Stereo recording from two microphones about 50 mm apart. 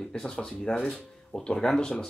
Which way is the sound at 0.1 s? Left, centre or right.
Centre.